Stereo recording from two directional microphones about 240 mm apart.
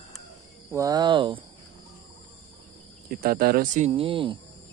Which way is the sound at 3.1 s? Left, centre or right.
Right.